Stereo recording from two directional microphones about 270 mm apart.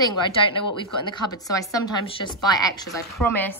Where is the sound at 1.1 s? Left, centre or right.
Centre.